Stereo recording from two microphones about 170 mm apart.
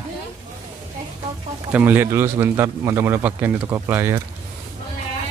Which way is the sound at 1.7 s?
10° right (ahead or behind).